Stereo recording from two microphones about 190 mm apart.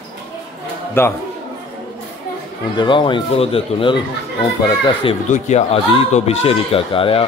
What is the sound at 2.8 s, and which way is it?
Speech, 25° left (ahead or behind).